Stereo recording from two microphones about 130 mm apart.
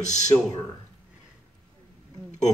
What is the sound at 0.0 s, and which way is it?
Speech, 65° left (ahead or behind).